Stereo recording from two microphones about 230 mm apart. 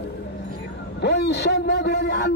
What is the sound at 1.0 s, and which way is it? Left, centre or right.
A man's voice, left.